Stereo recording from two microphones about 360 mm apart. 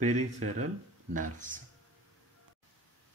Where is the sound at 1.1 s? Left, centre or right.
Right.